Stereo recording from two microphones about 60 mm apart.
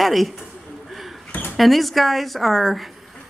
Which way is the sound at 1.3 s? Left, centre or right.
Left.